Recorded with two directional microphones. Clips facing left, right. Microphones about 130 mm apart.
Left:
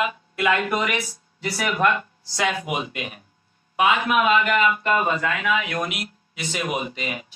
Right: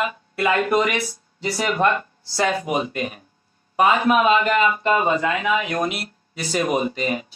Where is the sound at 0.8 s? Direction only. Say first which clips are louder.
Right 3 dB; centre (ahead or behind).